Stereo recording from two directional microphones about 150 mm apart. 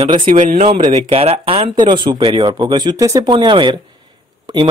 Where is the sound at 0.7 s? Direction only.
40° right (ahead or behind); by 3.3 s 20° right (ahead or behind).